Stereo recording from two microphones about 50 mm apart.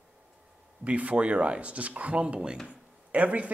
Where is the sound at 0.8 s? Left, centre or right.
Right.